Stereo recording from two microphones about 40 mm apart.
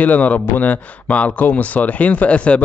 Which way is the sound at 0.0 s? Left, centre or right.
Left.